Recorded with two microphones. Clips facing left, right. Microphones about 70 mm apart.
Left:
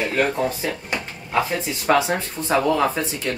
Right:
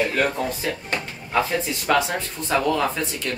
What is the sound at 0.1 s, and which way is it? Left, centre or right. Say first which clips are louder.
Drawer open or close: left 2 dB; centre.